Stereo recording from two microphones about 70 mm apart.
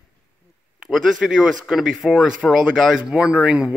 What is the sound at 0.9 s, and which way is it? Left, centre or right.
Speech, centre.